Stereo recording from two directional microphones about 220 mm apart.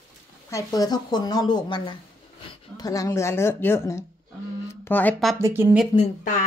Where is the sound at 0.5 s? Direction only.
15° left (ahead or behind).